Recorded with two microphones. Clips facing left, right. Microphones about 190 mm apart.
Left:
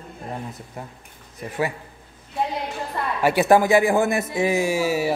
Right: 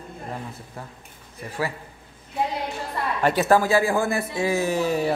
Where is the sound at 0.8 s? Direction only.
20° left (ahead or behind).